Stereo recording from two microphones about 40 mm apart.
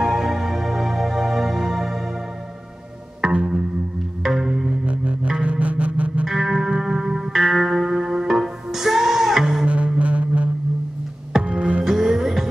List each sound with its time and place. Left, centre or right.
0.0 s music: centre
3.3 s music: right
4.2 s music: centre
4.8 s music: right
6.2 s music: centre
9.7 s a sound: right
11.4 s music: right
11.8 s music: centre